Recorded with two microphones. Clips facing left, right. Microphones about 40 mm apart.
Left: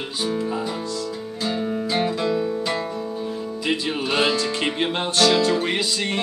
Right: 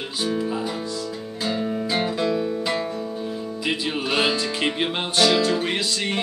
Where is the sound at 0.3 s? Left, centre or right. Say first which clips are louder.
Even; centre.